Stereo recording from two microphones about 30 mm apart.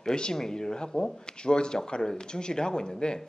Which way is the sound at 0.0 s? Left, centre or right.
Left.